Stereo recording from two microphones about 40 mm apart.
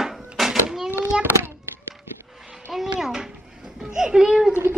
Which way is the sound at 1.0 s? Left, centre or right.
Right.